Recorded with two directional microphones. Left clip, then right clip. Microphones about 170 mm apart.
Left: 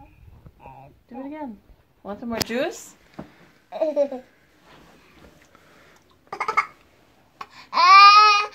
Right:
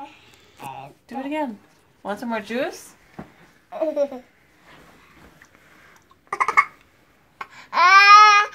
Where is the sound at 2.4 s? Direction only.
35° left (ahead or behind).